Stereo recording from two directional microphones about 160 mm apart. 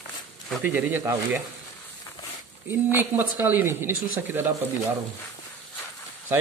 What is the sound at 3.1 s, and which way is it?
Speech, 10° right (ahead or behind).